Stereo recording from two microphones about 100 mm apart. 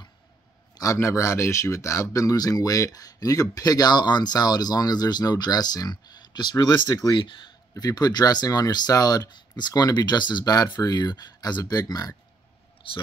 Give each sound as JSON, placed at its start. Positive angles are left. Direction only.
{"t": 0.7, "sound": "speech", "side_deg": 30}
{"t": 7.2, "sound": "speech", "side_deg": 55}
{"t": 7.7, "sound": "speech", "side_deg": 40}